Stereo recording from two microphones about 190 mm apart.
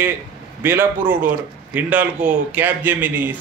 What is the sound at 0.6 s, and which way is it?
Speech, 10° right (ahead or behind).